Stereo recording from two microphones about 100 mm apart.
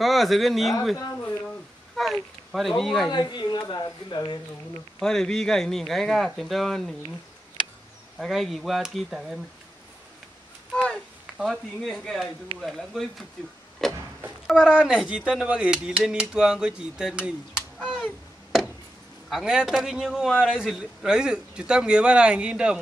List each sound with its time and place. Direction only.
0.0 s speech: centre (ahead or behind)
0.9 s a sound: 30° left (ahead or behind)
2.0 s a sound: centre (ahead or behind)
2.8 s speech: centre (ahead or behind)
3.1 s speech: 45° left (ahead or behind)
5.0 s speech: 5° left (ahead or behind)
8.2 s speech: centre (ahead or behind)
10.7 s a sound: 5° left (ahead or behind)
11.3 s speech: centre (ahead or behind)
14.5 s a man's voice: 10° right (ahead or behind)
19.2 s a man's voice: 5° right (ahead or behind)